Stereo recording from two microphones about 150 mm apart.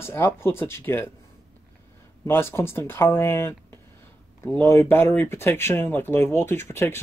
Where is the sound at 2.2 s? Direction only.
15° left (ahead or behind).